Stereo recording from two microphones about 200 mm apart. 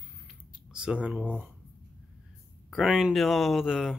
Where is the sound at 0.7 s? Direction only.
5° right (ahead or behind).